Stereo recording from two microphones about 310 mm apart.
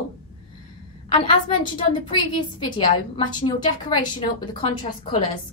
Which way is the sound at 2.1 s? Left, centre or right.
Centre.